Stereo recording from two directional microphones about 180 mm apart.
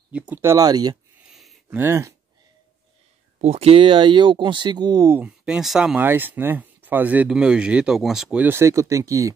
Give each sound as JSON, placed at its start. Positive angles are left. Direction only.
{"t": 0.3, "sound": "speech", "side_deg": -15}
{"t": 1.3, "sound": "a sound", "side_deg": 0}
{"t": 1.8, "sound": "speech", "side_deg": -15}
{"t": 3.3, "sound": "speech", "side_deg": -35}